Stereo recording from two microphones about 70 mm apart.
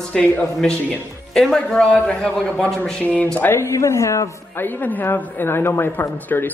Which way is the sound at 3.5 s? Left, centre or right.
Left.